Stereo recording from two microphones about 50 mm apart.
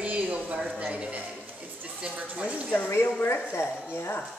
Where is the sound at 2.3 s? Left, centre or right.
Right.